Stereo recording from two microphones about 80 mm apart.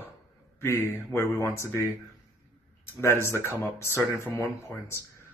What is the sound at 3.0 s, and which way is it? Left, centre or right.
Speech, left.